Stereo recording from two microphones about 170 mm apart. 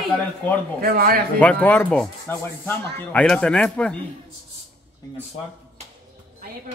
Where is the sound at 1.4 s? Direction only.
10° left (ahead or behind).